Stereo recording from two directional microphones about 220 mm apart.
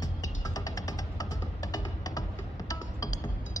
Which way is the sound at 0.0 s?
15° left (ahead or behind).